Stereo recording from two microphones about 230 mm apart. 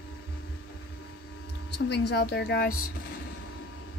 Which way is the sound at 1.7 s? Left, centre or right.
Left.